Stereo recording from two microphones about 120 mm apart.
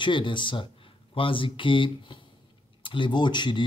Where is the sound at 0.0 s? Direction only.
40° left (ahead or behind).